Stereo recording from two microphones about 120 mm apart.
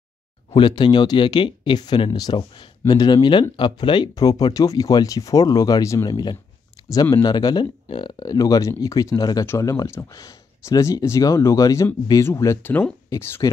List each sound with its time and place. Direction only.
0.5 s speech: 40° left (ahead or behind)
6.8 s a sound: 35° left (ahead or behind)
7.2 s speech: 35° left (ahead or behind)